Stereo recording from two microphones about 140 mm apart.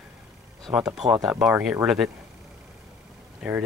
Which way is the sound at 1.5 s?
15° right (ahead or behind).